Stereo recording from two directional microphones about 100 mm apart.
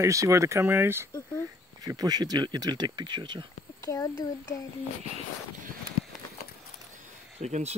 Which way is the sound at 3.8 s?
35° left (ahead or behind).